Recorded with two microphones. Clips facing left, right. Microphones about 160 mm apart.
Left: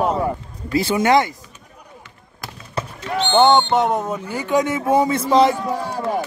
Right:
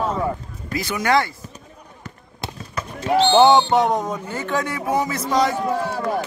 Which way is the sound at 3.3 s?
5° right (ahead or behind).